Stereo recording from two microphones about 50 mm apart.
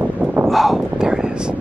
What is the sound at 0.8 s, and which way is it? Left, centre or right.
Speech, centre.